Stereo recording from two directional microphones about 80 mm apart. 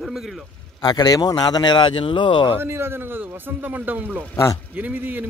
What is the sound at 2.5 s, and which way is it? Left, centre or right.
Speech, right.